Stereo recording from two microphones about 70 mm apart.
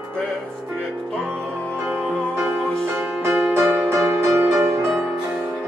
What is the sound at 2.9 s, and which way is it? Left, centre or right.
Music, right.